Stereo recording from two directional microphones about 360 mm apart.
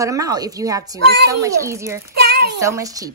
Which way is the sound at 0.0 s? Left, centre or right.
Centre.